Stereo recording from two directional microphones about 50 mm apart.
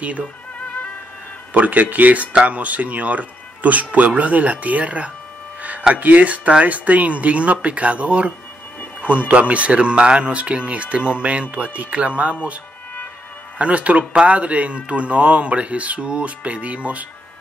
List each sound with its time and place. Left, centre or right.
1.5 s speech: right
5.6 s a sound: right
5.9 s speech: right
9.3 s speech: right
13.6 s speech: right